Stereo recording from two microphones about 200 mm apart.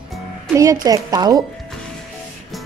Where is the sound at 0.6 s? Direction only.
15° right (ahead or behind).